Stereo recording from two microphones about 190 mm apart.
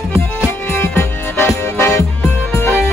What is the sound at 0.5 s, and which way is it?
Music, 10° left (ahead or behind).